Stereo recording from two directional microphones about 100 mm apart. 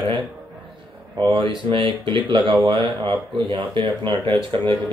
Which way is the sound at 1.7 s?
55° right (ahead or behind).